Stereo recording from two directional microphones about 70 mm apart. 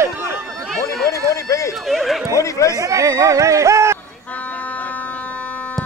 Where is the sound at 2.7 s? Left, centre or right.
Right.